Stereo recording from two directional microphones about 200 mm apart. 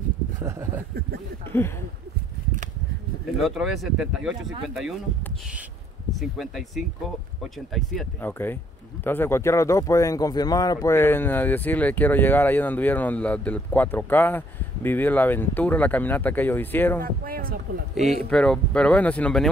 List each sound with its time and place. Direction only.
0.4 s speech: 15° right (ahead or behind)
1.5 s speech: 10° left (ahead or behind)
3.3 s speech: centre (ahead or behind)
6.1 s speech: centre (ahead or behind)
17.0 s speech: 45° right (ahead or behind)
18.3 s speech: 5° left (ahead or behind)